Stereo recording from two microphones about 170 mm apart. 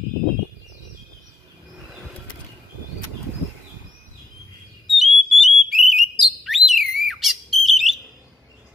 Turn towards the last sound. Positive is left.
turn(degrees=0)  # may be behind; listen again after turning